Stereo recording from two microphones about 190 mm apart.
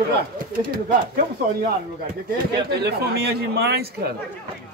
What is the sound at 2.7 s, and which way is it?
A man's voice, 60° right (ahead or behind).